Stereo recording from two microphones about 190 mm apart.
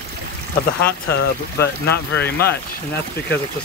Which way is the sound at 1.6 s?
60° left (ahead or behind).